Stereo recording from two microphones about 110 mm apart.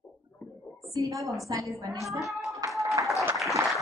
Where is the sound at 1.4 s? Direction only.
30° right (ahead or behind).